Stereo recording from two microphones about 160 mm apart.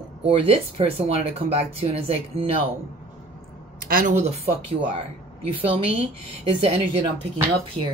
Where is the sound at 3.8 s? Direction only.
60° right (ahead or behind).